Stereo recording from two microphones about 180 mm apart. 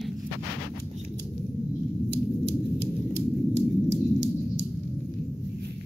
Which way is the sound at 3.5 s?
75° right (ahead or behind).